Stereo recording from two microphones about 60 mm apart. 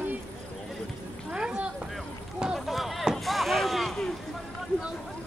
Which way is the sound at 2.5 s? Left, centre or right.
Centre.